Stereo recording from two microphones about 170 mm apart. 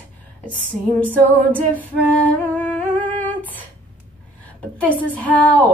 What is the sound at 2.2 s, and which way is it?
Humming, 10° left (ahead or behind).